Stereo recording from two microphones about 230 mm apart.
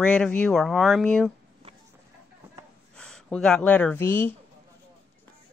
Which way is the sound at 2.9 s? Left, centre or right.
Centre.